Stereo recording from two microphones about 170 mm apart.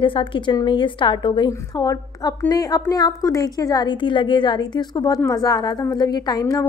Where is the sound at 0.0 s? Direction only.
30° left (ahead or behind).